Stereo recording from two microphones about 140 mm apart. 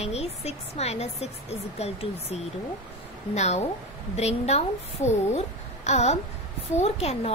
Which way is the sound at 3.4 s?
50° left (ahead or behind).